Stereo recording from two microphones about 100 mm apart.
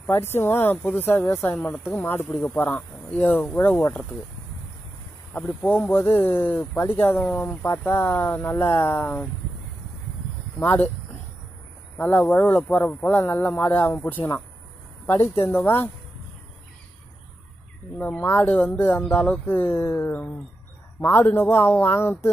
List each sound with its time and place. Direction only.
0.0 s speech: 25° left (ahead or behind); by 4.2 s 10° left (ahead or behind)
5.6 s speech: 20° left (ahead or behind)
7.6 s speech: 30° left (ahead or behind)
12.0 s speech: 20° left (ahead or behind)
13.0 s speech: 25° left (ahead or behind)
15.3 s speech: 25° left (ahead or behind)
17.9 s speech: 15° left (ahead or behind)